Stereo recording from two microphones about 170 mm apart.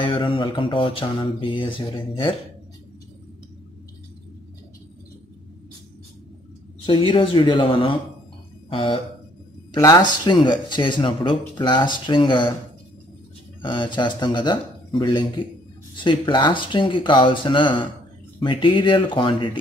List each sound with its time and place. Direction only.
0.0 s speech: 30° left (ahead or behind)
6.9 s speech: 30° left (ahead or behind)
13.6 s speech: 30° left (ahead or behind)